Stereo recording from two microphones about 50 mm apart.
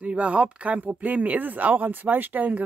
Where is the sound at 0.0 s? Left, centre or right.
Right.